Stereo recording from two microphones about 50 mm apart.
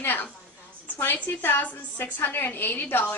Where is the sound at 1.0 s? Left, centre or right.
Left.